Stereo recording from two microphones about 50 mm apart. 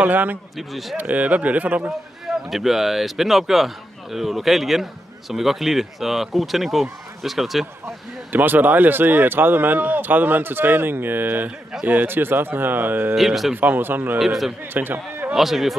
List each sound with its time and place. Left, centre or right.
0.0 s speech: right
0.6 s speech: centre
1.0 s speech: right
1.9 s speech: centre
8.3 s speech: right
13.1 s speech: centre
13.6 s speech: right
14.1 s speech: centre
14.7 s speech: right
15.3 s speech: centre